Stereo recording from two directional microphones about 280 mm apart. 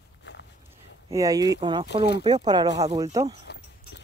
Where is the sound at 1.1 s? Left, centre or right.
Centre.